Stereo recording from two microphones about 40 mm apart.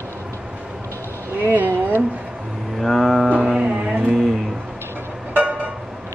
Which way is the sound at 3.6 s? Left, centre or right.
Right.